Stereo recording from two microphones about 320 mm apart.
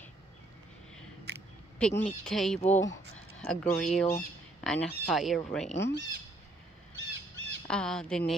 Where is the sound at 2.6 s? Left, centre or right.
Left.